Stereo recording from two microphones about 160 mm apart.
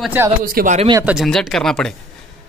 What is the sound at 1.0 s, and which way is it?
Speech, 5° right (ahead or behind).